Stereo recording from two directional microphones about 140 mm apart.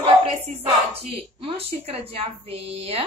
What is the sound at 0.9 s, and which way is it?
Speech, 45° right (ahead or behind).